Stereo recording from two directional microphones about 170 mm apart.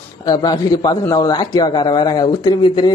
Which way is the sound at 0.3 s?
25° left (ahead or behind).